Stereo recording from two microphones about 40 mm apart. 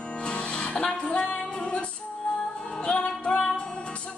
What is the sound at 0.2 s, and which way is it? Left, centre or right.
Music, left.